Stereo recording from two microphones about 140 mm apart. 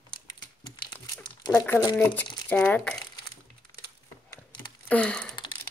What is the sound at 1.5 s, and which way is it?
Speech, 15° left (ahead or behind).